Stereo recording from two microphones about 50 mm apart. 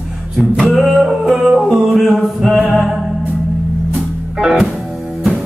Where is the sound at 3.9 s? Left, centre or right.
Centre.